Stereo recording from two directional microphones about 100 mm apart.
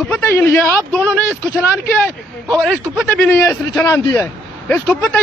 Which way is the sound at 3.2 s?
25° left (ahead or behind).